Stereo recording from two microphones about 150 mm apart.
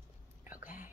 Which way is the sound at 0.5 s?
65° left (ahead or behind).